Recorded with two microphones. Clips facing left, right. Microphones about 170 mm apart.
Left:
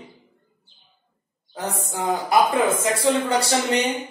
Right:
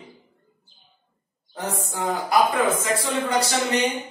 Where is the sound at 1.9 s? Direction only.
20° left (ahead or behind).